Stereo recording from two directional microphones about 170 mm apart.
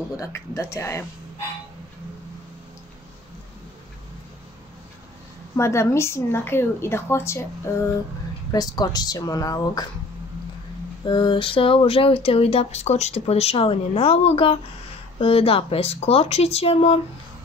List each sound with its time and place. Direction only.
0.2 s a woman's voice: 15° left (ahead or behind)
5.6 s a woman's voice: 15° left (ahead or behind)
11.1 s speech: 30° left (ahead or behind)